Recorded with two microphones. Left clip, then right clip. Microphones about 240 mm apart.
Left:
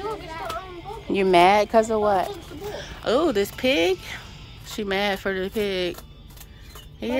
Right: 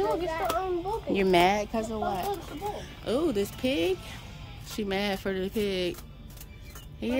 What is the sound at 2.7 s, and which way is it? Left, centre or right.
Speech, centre.